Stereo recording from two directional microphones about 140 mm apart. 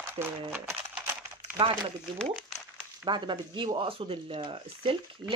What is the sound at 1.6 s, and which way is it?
Speech, 35° right (ahead or behind).